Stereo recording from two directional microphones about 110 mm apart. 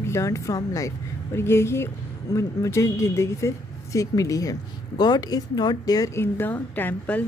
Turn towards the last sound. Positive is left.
turn(degrees=15)  # may be behind; listen again after turning